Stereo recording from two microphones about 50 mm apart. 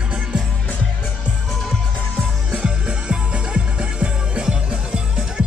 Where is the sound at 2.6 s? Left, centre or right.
Right.